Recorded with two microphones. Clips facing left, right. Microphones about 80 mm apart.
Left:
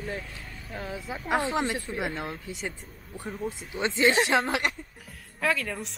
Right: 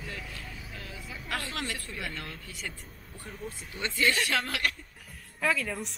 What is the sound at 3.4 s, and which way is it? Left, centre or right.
Speech, centre.